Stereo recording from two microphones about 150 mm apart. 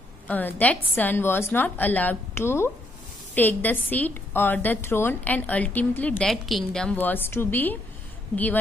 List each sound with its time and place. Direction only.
0.3 s a woman's voice: 10° left (ahead or behind)